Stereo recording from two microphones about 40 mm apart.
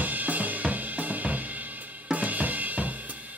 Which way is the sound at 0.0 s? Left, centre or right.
Right.